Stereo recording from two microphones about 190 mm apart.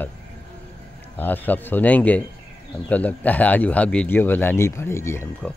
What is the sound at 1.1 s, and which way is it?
Speech, 10° left (ahead or behind).